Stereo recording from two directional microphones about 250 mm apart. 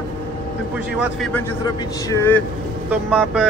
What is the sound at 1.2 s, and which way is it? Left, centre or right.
A man's voice, centre.